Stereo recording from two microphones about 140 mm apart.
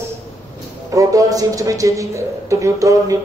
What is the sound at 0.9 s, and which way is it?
A man's voice, 25° right (ahead or behind).